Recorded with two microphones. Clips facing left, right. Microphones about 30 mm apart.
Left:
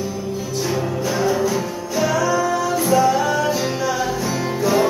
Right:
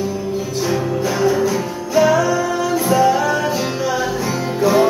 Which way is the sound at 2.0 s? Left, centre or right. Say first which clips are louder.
Right 5 dB; centre.